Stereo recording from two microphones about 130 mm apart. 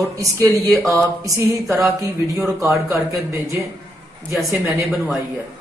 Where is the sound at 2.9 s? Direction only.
25° right (ahead or behind).